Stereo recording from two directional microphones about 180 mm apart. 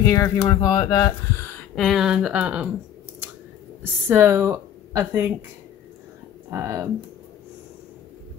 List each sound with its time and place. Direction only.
0.0 s speech: 15° left (ahead or behind)
1.8 s speech: centre (ahead or behind)
3.8 s speech: 15° right (ahead or behind)
6.5 s speech: 15° right (ahead or behind)